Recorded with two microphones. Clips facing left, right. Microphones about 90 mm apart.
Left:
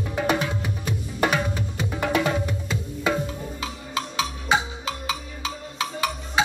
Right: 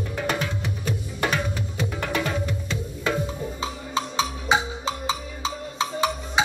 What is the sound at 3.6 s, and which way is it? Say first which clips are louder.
Music: right 2 dB; 30° right (ahead or behind).